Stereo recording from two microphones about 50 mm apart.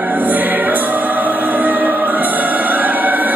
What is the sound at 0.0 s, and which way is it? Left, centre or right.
Music, right.